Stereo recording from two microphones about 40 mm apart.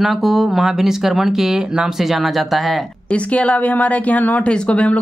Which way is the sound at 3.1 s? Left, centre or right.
Left.